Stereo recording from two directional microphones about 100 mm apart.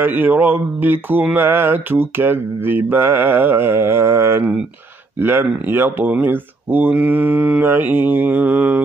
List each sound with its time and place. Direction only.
0.0 s mantra: 20° right (ahead or behind)
5.2 s speech: 25° right (ahead or behind)